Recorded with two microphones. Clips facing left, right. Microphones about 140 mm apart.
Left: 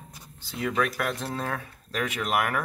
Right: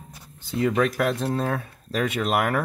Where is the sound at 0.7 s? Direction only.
30° right (ahead or behind).